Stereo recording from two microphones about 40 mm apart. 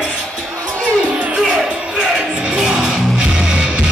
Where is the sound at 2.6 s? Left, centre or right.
Centre.